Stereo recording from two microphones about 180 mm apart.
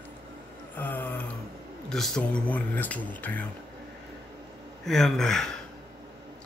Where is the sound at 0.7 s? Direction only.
10° left (ahead or behind).